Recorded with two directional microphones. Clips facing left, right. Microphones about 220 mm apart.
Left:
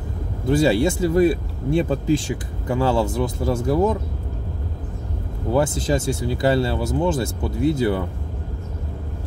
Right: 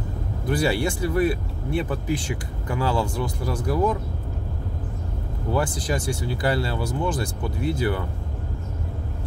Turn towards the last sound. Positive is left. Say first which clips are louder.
# left 5 dB
turn(degrees=20)  # may be behind; listen again after turning